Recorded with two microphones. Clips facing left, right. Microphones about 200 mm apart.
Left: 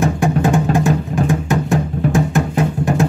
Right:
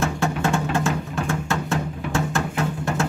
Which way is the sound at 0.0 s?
15° left (ahead or behind).